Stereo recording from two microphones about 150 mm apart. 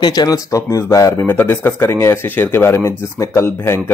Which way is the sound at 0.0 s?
25° left (ahead or behind).